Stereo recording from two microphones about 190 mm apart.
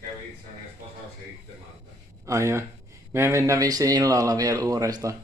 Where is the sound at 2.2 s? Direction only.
15° right (ahead or behind).